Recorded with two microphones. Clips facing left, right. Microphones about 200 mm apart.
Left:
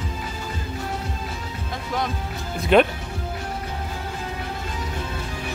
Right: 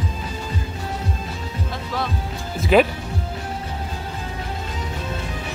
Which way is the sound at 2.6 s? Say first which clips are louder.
Right 1 dB; 5° right (ahead or behind).